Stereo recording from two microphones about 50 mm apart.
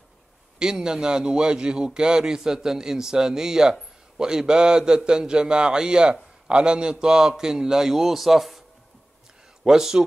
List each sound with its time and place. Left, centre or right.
0.6 s a man's voice: centre
9.7 s a man's voice: centre